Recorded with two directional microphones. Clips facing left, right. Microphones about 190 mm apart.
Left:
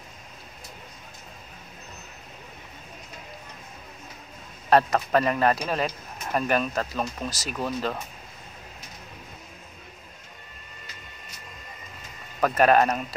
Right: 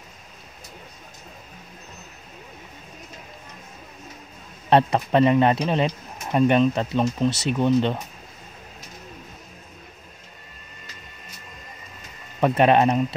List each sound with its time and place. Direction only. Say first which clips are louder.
4.6 s speech: right 2 dB; 25° right (ahead or behind)
12.4 s speech: right 2 dB; 25° right (ahead or behind)